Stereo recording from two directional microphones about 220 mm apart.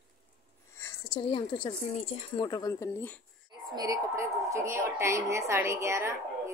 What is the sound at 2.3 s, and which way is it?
Speech, 20° left (ahead or behind).